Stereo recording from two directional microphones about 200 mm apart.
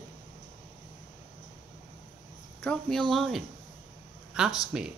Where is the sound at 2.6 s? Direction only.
5° left (ahead or behind).